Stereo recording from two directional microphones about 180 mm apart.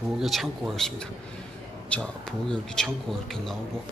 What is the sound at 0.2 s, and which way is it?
A man's voice, centre (ahead or behind).